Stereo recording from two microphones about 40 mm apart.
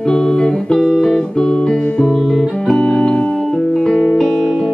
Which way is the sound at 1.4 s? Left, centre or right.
Centre.